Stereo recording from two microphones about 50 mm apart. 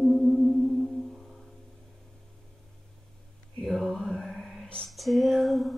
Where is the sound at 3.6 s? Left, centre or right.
Centre.